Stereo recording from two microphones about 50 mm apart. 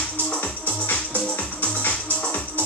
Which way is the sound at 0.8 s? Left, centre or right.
Left.